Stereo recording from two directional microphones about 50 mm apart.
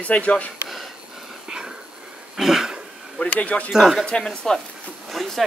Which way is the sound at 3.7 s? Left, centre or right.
Centre.